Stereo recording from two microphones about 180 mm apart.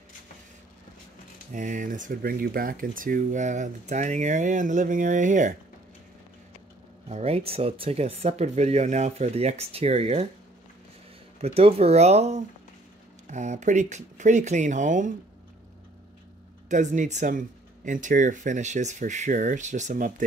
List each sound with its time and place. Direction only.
1.5 s speech: 45° right (ahead or behind)
7.1 s speech: 35° right (ahead or behind)
11.4 s speech: 35° right (ahead or behind)
16.6 s speech: 45° right (ahead or behind)